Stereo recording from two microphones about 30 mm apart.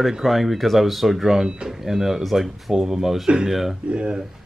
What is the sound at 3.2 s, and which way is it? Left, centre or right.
Speech, right.